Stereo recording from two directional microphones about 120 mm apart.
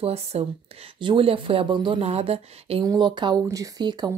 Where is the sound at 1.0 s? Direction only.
45° right (ahead or behind).